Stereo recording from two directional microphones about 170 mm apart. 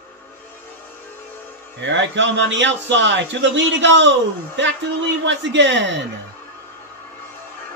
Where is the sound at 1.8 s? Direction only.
90° right.